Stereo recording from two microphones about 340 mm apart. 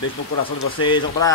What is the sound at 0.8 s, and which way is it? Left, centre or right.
Speech, centre.